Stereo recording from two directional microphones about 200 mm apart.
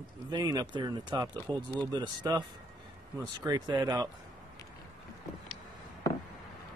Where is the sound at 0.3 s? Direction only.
20° right (ahead or behind).